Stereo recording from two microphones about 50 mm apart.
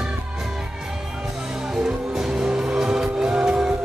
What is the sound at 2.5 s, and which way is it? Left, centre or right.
Music, right.